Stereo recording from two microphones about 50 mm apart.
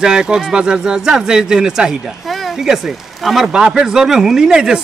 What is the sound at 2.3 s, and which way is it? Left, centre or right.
Speech, centre.